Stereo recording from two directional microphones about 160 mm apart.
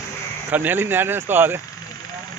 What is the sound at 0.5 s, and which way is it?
Speech, 10° right (ahead or behind).